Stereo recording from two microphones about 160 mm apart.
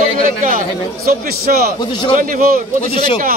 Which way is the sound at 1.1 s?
70° right (ahead or behind).